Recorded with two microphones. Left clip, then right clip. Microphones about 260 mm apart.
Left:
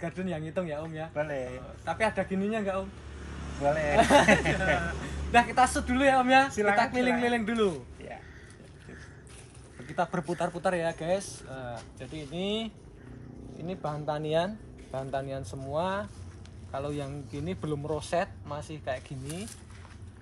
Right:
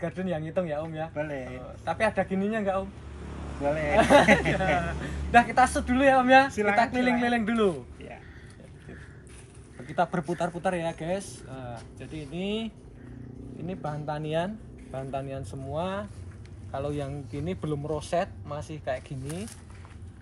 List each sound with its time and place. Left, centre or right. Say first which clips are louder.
0.0 s speech: right 4 dB; centre
1.1 s speech: left 1 dB; centre
1.9 s speech: right 2 dB; centre
3.9 s speech: right 3 dB; centre
9.8 s speech: right 3 dB; centre